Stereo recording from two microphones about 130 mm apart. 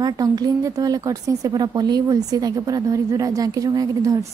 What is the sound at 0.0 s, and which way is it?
A woman's voice, 30° right (ahead or behind).